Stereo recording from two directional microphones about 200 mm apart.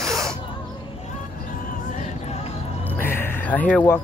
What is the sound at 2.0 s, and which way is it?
Music, 30° left (ahead or behind).